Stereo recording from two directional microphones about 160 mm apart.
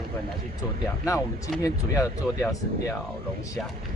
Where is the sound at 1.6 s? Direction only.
20° left (ahead or behind).